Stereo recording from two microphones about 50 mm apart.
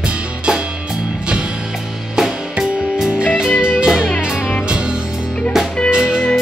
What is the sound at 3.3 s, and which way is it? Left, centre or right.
Music, centre.